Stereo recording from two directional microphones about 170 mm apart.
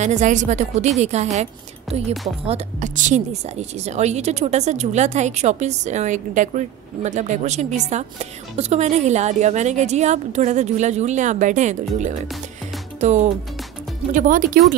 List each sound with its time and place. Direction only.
0.0 s a woman's voice: 45° right (ahead or behind)